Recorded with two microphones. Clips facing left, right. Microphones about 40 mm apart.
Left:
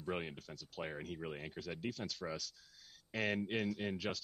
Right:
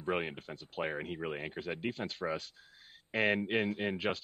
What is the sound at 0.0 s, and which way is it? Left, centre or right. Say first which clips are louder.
Speech: right 7 dB; right.